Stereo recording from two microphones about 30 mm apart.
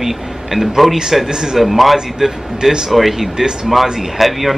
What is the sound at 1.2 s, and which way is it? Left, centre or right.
Speech, centre.